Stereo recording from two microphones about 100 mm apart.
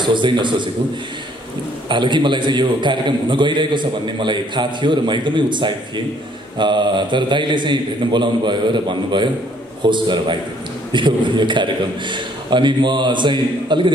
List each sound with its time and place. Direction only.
0.0 s a man's voice: 50° right (ahead or behind)
1.9 s a man's voice: 50° right (ahead or behind)